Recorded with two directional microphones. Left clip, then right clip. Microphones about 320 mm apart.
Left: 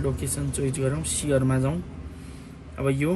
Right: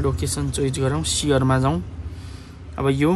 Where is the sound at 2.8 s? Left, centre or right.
Centre.